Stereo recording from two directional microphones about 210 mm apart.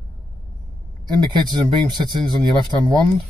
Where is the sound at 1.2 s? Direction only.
20° right (ahead or behind).